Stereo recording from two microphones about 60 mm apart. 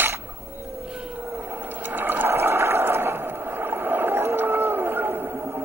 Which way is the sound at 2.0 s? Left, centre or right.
Right.